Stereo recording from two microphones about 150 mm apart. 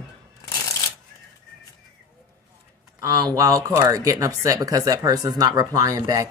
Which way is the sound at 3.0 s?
25° right (ahead or behind).